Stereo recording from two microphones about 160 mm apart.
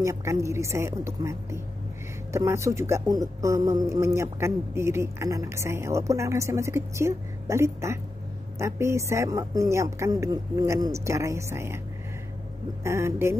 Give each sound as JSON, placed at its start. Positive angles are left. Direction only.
{"t": 0.0, "sound": "speech", "side_deg": -20}
{"t": 12.8, "sound": "speech", "side_deg": -15}